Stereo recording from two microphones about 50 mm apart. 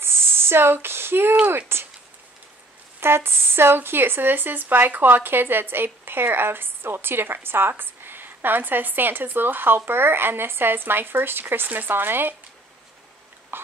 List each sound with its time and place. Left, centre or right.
0.0 s a sound: right
1.7 s speech: right
3.0 s speech: right